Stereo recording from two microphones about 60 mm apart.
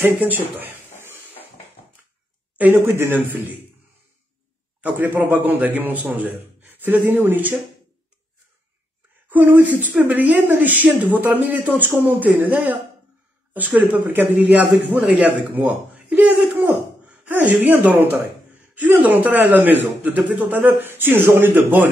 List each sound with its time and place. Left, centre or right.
0.0 s a sound: right
2.7 s a man's voice: right
4.8 s a man's voice: right
9.3 s speech: right
14.0 s a man's voice: right
16.5 s a sound: right
17.3 s a man's voice: right